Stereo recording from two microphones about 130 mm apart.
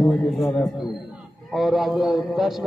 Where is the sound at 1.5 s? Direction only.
Centre (ahead or behind).